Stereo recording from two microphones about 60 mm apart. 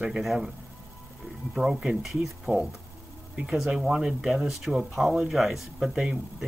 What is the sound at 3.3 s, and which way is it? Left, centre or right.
Speech, centre.